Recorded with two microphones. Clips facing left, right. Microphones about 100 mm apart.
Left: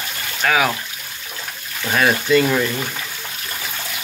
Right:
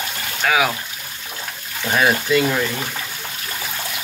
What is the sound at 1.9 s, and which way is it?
Speech, 5° right (ahead or behind).